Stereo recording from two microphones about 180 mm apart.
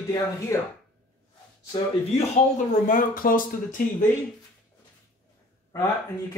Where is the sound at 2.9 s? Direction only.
50° left (ahead or behind).